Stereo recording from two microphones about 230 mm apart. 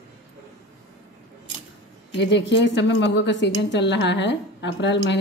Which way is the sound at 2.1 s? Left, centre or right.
Left.